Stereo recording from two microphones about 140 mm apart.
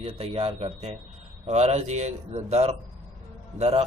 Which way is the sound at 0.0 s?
45° right (ahead or behind).